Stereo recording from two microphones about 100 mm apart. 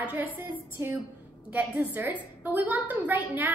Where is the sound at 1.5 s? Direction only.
15° right (ahead or behind).